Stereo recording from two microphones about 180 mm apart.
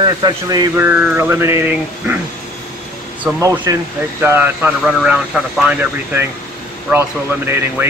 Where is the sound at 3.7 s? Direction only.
20° right (ahead or behind).